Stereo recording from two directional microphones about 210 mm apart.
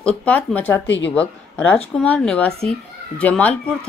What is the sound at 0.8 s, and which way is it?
Speech, 60° left (ahead or behind).